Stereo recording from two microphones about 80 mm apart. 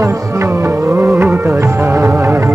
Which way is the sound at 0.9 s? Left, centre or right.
Right.